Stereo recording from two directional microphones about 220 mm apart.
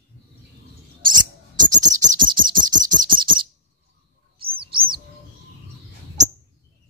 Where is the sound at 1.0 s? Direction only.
20° right (ahead or behind).